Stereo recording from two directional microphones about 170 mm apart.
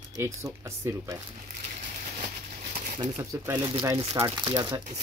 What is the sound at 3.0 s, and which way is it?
Speech, 20° right (ahead or behind).